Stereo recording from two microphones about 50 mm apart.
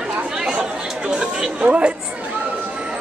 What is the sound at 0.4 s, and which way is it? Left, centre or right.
Chatter, centre.